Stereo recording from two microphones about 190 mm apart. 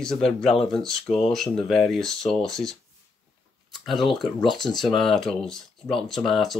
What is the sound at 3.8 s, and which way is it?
Speech, centre (ahead or behind).